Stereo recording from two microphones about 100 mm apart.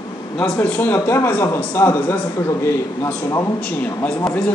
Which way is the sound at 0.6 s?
15° left (ahead or behind).